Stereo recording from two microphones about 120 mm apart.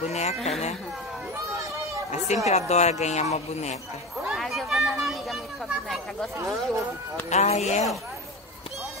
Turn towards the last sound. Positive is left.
turn(degrees=65)  # may be behind; listen again after turning